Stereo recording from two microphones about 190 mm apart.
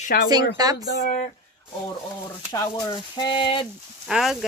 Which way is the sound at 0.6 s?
20° right (ahead or behind).